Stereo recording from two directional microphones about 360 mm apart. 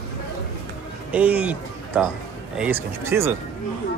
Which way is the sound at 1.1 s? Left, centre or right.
Centre.